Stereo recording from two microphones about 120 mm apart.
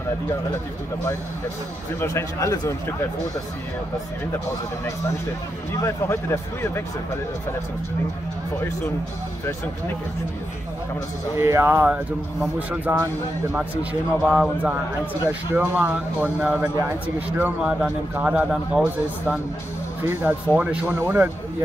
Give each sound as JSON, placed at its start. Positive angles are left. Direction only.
{"t": 2.0, "sound": "speech", "side_deg": 25}
{"t": 5.7, "sound": "speech", "side_deg": 25}
{"t": 11.3, "sound": "speech", "side_deg": -20}
{"t": 14.2, "sound": "a man's voice", "side_deg": -10}